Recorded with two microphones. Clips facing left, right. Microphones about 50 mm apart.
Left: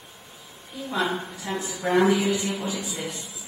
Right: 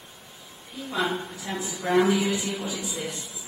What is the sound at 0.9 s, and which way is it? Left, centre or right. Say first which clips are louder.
Speech: left 1 dB; centre.